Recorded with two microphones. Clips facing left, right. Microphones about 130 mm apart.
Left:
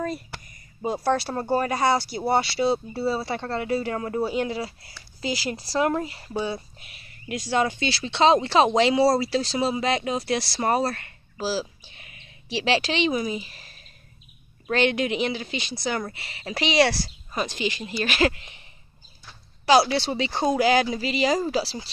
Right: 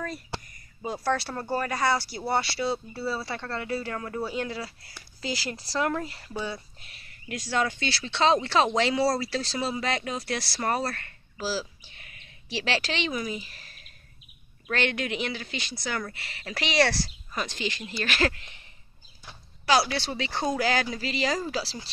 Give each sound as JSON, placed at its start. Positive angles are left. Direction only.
{"t": 0.8, "sound": "speech", "side_deg": 15}
{"t": 19.6, "sound": "speech", "side_deg": 20}